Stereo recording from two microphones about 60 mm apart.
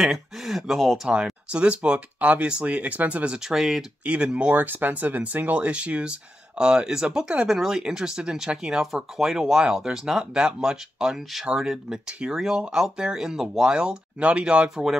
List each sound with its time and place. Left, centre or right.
0.0 s speech: centre
1.0 s speech: centre
3.4 s speech: centre
4.0 s speech: centre
4.6 s speech: right